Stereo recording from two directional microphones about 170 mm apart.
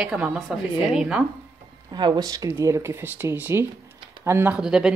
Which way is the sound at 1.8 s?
25° right (ahead or behind).